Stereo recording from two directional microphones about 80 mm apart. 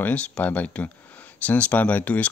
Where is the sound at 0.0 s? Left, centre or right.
Centre.